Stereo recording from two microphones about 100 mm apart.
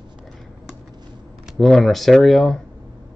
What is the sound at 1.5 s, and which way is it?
Speech, 5° left (ahead or behind).